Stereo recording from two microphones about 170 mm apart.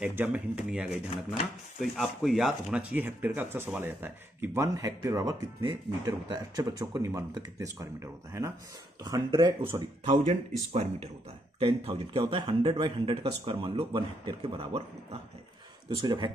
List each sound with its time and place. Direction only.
0.0 s speech: 10° right (ahead or behind)
10.0 s speech: 45° right (ahead or behind)
16.0 s speech: 30° right (ahead or behind)